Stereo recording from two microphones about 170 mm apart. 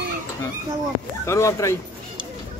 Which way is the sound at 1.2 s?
15° left (ahead or behind).